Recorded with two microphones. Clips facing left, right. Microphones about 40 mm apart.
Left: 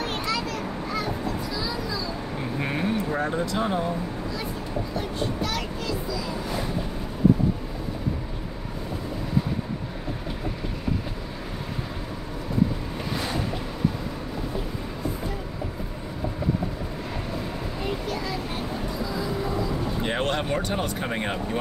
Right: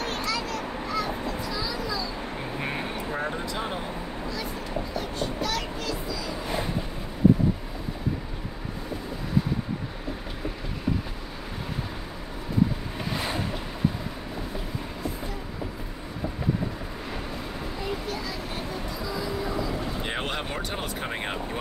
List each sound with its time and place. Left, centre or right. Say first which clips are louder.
0.0 s a sound: left 2 dB; centre
2.6 s vehicle: left 6 dB; centre
5.4 s child singing: even; centre
13.1 s music: left 1 dB; centre
20.0 s speech: left 4 dB; centre